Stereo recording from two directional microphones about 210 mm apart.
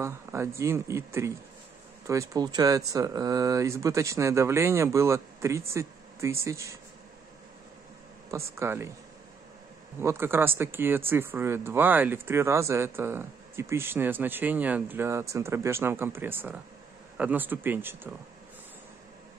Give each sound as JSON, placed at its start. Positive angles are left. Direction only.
{"t": 0.0, "sound": "speech", "side_deg": -15}
{"t": 8.5, "sound": "speech", "side_deg": -10}
{"t": 10.0, "sound": "speech", "side_deg": -10}